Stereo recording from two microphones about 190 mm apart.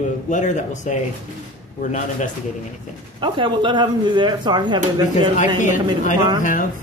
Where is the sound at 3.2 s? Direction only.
25° right (ahead or behind).